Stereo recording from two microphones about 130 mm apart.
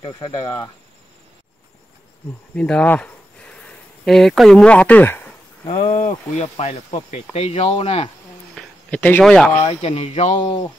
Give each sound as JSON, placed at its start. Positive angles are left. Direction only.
{"t": 2.5, "sound": "speech", "side_deg": 10}
{"t": 5.9, "sound": "speech", "side_deg": 80}
{"t": 6.4, "sound": "speech", "side_deg": 55}
{"t": 8.5, "sound": "a sound", "side_deg": 10}
{"t": 9.2, "sound": "speech", "side_deg": 5}
{"t": 9.7, "sound": "speech", "side_deg": 50}
{"t": 10.4, "sound": "speech", "side_deg": 40}